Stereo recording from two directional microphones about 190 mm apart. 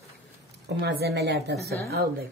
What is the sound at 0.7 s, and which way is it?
Speech, 60° right (ahead or behind).